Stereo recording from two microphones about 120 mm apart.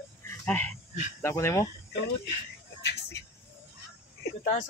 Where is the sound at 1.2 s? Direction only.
20° left (ahead or behind).